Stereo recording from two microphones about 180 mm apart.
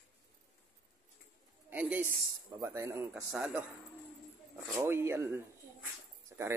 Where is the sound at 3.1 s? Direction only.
5° right (ahead or behind).